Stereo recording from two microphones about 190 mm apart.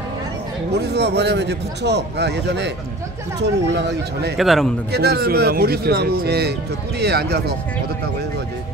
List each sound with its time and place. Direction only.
0.7 s a man's voice: 60° right (ahead or behind)
4.4 s a man's voice: centre (ahead or behind)
4.9 s a man's voice: 55° right (ahead or behind)